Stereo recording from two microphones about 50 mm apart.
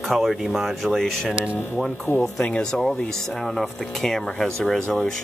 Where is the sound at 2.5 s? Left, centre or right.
Centre.